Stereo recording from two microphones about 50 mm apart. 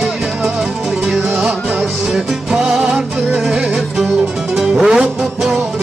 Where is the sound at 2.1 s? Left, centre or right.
Centre.